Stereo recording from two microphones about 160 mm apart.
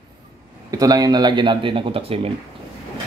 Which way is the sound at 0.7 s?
25° right (ahead or behind).